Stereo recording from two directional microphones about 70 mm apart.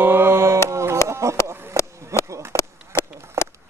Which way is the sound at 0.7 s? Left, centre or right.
Right.